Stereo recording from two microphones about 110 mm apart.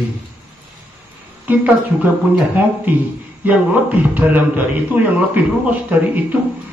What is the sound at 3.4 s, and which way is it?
A man's voice, 15° right (ahead or behind).